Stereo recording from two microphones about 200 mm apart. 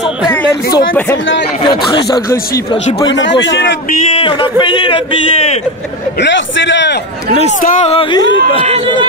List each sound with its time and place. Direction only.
0.3 s speech: 15° left (ahead or behind)
3.1 s a man's voice: 65° left (ahead or behind)
4.2 s speech: 25° left (ahead or behind)
6.1 s a man's voice: 65° left (ahead or behind)
7.6 s speech: 35° left (ahead or behind)
8.6 s speech: 30° right (ahead or behind)